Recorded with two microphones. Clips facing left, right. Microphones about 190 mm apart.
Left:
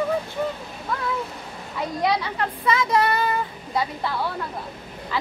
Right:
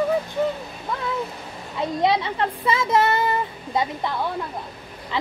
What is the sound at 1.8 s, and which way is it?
Speech, 25° right (ahead or behind).